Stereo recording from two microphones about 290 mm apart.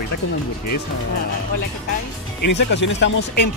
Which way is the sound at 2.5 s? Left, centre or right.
Left.